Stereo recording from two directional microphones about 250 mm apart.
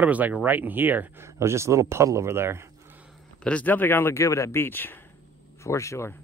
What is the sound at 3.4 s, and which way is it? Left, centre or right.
Speech, centre.